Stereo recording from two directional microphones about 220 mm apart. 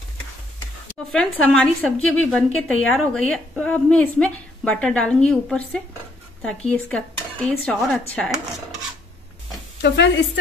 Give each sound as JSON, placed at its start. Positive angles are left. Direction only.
{"t": 1.1, "sound": "a woman's voice", "side_deg": 5}
{"t": 9.8, "sound": "speech", "side_deg": 55}